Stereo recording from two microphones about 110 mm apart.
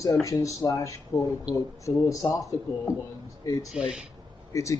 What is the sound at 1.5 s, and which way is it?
Speech, 10° right (ahead or behind).